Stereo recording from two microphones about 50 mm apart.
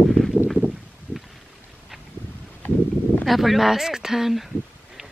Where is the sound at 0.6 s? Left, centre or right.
Right.